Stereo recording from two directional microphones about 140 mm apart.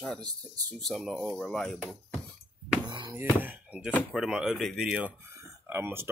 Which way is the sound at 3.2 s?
15° right (ahead or behind).